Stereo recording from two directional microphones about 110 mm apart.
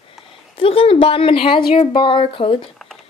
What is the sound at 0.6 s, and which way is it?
Speech, 55° left (ahead or behind).